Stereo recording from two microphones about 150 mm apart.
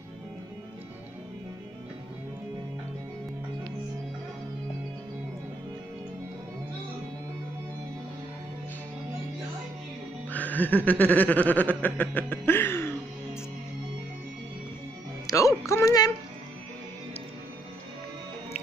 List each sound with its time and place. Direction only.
10.3 s snicker: 10° left (ahead or behind)
11.8 s a sound: 10° left (ahead or behind)
15.2 s music: 20° left (ahead or behind)